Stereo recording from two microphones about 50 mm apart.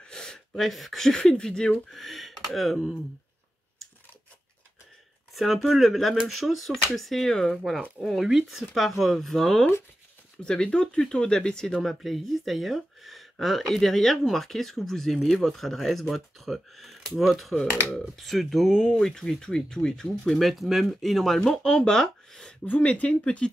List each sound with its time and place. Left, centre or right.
0.0 s speech: centre
1.9 s speech: centre
5.3 s speech: centre
11.8 s speech: centre
18.8 s speech: centre
21.4 s speech: centre
22.7 s speech: left